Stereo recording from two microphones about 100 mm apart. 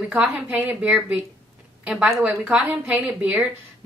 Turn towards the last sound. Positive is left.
turn(degrees=-15)  # may be behind; listen again after turning